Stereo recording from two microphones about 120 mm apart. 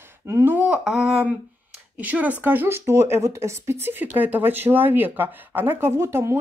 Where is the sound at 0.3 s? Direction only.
20° right (ahead or behind).